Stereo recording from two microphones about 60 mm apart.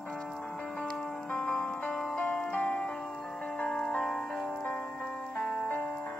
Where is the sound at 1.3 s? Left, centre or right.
Centre.